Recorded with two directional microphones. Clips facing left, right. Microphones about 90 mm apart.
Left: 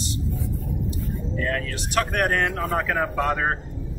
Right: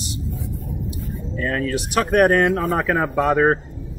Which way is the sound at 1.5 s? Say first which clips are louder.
Right 9 dB; 15° right (ahead or behind).